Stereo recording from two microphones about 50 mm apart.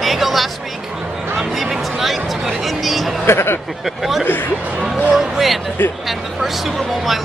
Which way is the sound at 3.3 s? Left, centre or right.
Left.